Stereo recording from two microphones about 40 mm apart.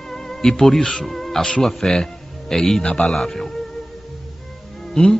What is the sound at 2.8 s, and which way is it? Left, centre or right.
Speech, left.